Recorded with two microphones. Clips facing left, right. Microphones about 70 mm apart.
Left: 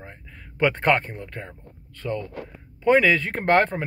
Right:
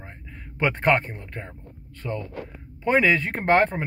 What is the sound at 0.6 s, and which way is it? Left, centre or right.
Speech, centre.